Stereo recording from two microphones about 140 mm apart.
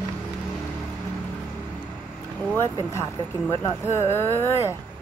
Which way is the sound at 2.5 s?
20° left (ahead or behind).